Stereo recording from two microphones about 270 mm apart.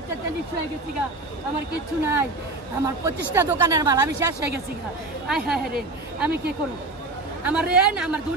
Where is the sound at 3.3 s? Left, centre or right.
Centre.